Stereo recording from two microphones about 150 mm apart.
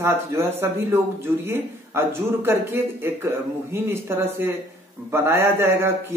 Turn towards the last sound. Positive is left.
turn(degrees=-15)  # may be behind; listen again after turning